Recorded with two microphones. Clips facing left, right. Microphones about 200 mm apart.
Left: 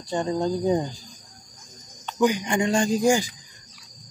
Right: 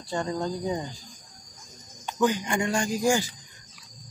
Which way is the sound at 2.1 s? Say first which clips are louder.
Left 3 dB; 15° left (ahead or behind).